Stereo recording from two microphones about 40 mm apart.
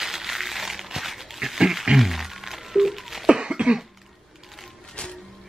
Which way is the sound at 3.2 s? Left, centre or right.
Right.